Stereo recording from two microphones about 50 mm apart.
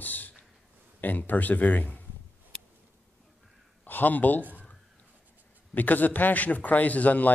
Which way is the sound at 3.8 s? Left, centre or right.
Left.